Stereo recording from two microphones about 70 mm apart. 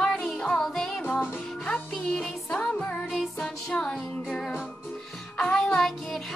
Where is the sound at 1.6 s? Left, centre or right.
Centre.